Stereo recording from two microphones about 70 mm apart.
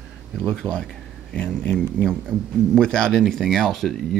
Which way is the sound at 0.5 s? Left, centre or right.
Centre.